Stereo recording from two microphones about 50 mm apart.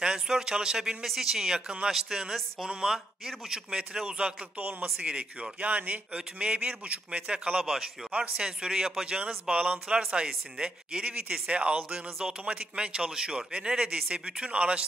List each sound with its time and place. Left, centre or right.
0.0 s a man's voice: centre
8.0 s a man's voice: centre
11.1 s a man's voice: right